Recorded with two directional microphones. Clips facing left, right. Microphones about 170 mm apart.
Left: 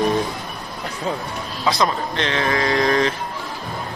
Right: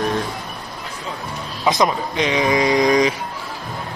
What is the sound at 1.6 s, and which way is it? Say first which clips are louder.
Speech: right 2 dB; 15° right (ahead or behind).